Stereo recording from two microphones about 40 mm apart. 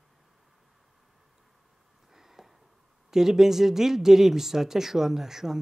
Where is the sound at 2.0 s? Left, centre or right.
Centre.